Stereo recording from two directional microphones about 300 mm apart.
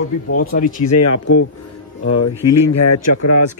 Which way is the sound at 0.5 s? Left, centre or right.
Left.